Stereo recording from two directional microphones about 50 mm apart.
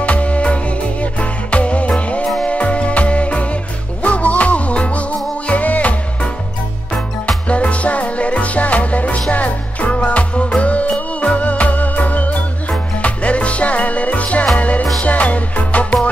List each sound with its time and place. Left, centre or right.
0.0 s music: left